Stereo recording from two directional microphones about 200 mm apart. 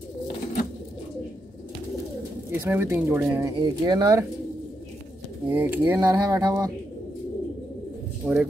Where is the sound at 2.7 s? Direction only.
10° right (ahead or behind).